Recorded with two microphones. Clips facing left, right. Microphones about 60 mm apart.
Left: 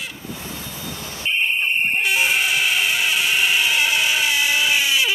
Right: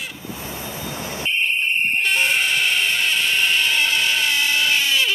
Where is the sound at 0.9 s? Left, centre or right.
Right.